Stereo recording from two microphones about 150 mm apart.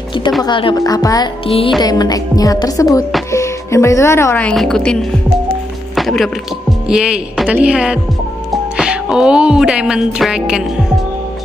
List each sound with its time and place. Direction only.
0.4 s a woman's voice: 35° left (ahead or behind)
1.4 s speech: 40° left (ahead or behind)
1.8 s a woman's voice: 25° left (ahead or behind)
4.5 s music: 5° left (ahead or behind)